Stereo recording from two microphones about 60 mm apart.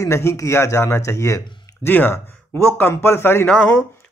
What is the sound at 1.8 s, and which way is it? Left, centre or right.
Speech, left.